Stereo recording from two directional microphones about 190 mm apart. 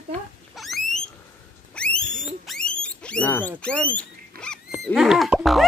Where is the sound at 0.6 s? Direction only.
Centre (ahead or behind).